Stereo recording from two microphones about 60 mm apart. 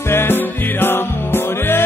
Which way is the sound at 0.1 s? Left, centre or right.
Left.